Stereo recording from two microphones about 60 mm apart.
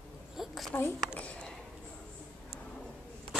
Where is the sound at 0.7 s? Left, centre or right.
Left.